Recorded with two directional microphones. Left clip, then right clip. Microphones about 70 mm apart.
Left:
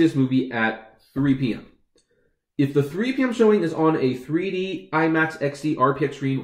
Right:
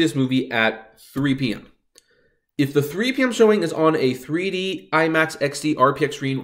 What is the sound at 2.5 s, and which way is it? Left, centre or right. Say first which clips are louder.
Speech: right 1 dB; right.